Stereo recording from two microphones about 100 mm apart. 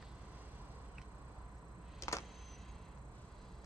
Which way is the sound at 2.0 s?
30° left (ahead or behind).